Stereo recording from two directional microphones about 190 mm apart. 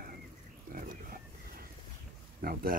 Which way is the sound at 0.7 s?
50° right (ahead or behind).